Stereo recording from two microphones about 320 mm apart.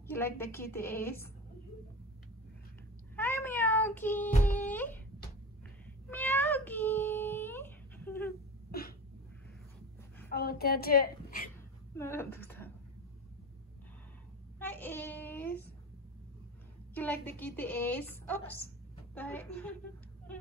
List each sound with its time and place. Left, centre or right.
0.0 s a woman's voice: centre
3.2 s meow: centre
4.6 s wail: centre
6.0 s cat: centre
10.3 s a woman's voice: left
11.9 s a woman's voice: centre
14.6 s speech: centre
16.9 s a woman's voice: centre